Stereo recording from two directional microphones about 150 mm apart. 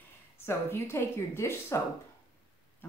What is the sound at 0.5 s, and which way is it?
Speech, 15° left (ahead or behind).